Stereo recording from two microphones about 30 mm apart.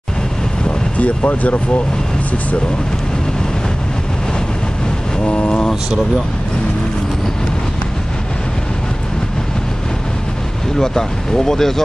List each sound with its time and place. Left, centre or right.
0.7 s speech: left
5.2 s vehicle: left
10.8 s speech: centre